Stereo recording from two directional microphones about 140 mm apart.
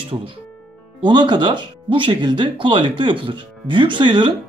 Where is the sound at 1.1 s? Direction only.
35° right (ahead or behind).